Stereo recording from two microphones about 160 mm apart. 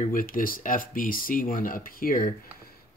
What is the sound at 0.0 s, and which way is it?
Speech, 60° left (ahead or behind).